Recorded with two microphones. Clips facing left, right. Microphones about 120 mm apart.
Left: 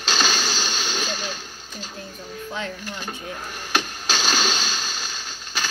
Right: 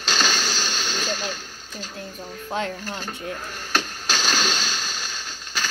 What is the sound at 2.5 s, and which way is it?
Speech, 45° right (ahead or behind).